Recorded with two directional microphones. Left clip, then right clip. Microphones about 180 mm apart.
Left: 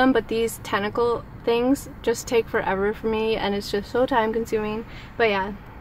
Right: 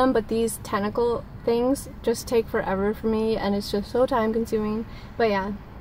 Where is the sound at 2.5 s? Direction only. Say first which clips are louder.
Left 2 dB; 15° left (ahead or behind).